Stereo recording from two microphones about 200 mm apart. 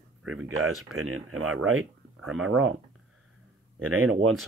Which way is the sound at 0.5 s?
90° right.